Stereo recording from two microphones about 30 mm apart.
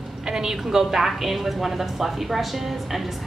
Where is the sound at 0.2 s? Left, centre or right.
Centre.